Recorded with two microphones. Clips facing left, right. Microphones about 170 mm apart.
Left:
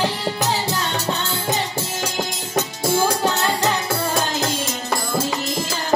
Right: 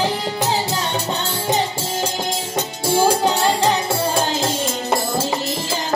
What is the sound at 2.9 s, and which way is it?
Music, 25° right (ahead or behind).